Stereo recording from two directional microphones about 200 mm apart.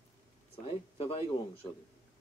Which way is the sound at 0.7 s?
30° left (ahead or behind).